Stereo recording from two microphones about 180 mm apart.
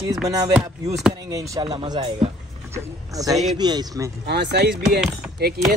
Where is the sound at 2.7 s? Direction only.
20° right (ahead or behind).